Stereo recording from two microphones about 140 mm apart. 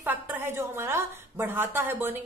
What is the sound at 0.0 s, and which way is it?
A woman's voice, 15° right (ahead or behind).